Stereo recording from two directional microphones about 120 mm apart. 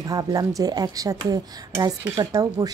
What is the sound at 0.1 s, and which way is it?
Speech, 30° right (ahead or behind).